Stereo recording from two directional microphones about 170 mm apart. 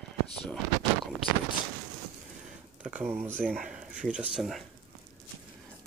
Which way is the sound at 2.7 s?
5° right (ahead or behind).